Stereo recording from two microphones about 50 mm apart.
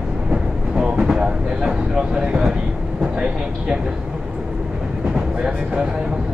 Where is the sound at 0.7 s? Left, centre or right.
Centre.